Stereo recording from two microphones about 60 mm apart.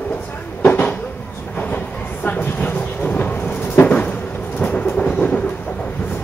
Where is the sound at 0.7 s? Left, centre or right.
Left.